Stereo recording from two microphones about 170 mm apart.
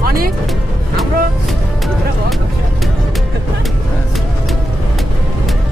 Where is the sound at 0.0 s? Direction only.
60° right (ahead or behind).